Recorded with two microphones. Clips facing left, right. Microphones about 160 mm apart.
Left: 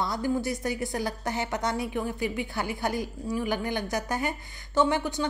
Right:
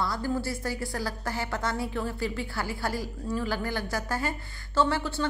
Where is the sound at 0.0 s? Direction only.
20° left (ahead or behind).